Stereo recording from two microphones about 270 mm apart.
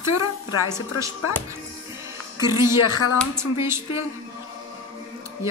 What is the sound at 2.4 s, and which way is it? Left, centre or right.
Speech, centre.